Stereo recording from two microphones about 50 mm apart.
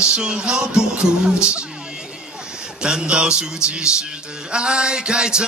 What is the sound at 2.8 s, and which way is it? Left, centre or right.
Mantra, centre.